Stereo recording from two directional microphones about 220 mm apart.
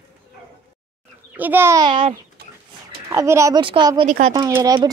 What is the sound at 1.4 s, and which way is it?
Speech, 10° right (ahead or behind).